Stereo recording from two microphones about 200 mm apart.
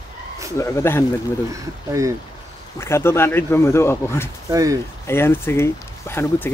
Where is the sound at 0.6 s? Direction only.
15° left (ahead or behind).